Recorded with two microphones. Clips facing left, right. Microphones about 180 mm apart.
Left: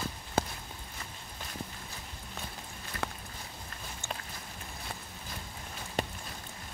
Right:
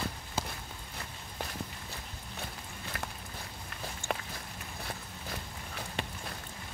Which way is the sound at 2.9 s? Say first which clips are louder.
Left 4 dB; 70° right (ahead or behind).